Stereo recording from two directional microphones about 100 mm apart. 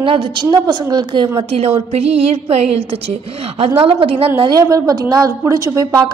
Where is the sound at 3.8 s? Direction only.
65° right (ahead or behind).